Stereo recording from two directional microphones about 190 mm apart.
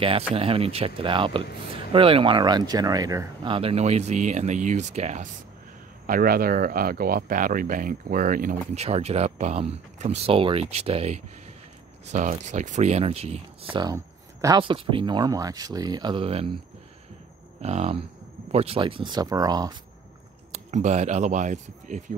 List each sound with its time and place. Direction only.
0.3 s speech: 30° right (ahead or behind)
6.0 s speech: 50° right (ahead or behind)
8.7 s speech: 35° right (ahead or behind)
17.6 s speech: 35° right (ahead or behind); by 19.7 s 20° right (ahead or behind)
20.5 s speech: 35° right (ahead or behind)